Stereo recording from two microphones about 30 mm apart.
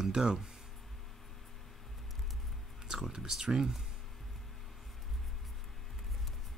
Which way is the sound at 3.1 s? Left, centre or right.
Centre.